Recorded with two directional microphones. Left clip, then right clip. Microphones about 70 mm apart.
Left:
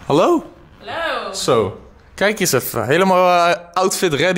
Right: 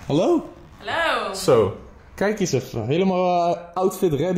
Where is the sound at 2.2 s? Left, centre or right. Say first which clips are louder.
Left 6 dB; centre.